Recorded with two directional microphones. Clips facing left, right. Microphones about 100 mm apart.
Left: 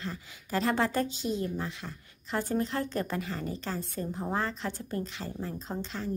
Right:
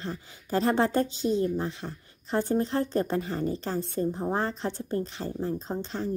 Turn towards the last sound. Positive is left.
turn(degrees=-35)  # may be behind; listen again after turning